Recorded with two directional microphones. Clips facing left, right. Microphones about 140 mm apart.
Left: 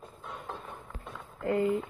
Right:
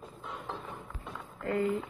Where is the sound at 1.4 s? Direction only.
20° left (ahead or behind).